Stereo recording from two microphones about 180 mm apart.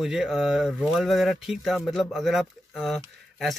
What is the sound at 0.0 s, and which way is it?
Speech, 5° right (ahead or behind).